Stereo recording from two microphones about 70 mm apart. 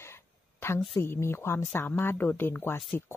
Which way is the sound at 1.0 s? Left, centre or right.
Left.